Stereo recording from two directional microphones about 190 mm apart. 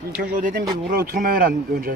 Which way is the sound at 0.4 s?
45° right (ahead or behind).